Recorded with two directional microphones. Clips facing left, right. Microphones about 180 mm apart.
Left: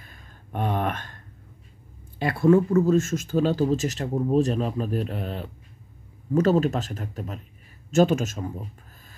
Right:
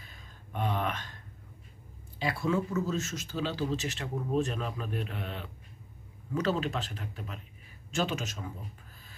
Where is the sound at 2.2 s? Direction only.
55° left (ahead or behind).